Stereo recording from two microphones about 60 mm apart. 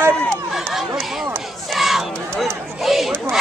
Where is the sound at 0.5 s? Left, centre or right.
Centre.